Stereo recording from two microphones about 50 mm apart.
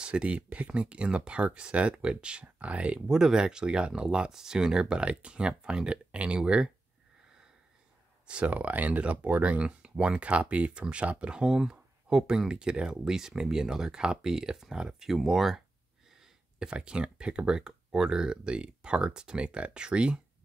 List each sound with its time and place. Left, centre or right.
0.0 s speech: right
3.1 s speech: centre
8.3 s speech: right